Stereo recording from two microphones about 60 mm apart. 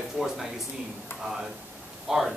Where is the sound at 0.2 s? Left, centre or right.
Right.